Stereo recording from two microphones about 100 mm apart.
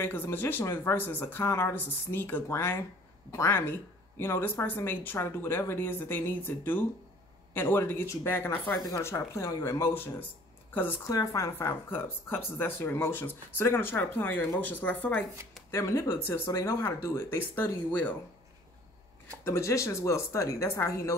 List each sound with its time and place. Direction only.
0.0 s speech: 20° left (ahead or behind)
8.7 s speech: 40° left (ahead or behind)
9.0 s a woman's voice: 30° left (ahead or behind)
11.1 s speech: 35° left (ahead or behind)
19.4 s speech: 30° left (ahead or behind)